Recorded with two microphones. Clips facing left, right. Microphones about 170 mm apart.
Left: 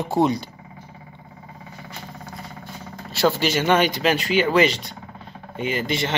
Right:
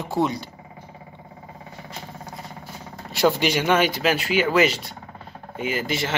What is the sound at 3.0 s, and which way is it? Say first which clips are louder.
A man's voice: even; 15° right (ahead or behind).